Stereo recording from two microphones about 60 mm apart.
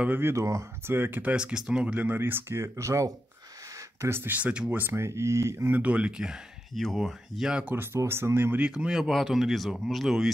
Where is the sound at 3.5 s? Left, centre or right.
Right.